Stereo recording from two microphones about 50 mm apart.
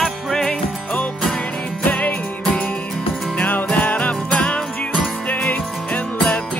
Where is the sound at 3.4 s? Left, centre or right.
Left.